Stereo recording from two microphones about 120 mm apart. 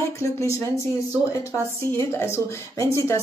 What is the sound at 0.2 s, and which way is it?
Speech, 25° left (ahead or behind).